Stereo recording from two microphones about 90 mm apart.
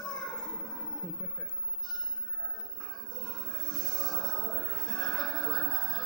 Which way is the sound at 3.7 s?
50° left (ahead or behind).